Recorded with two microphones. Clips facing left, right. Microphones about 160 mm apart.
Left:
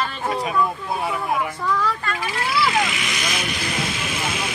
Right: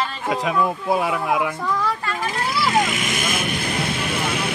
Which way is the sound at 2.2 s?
45° right (ahead or behind).